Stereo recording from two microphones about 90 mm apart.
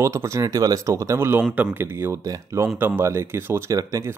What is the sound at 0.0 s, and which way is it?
Speech, 30° right (ahead or behind).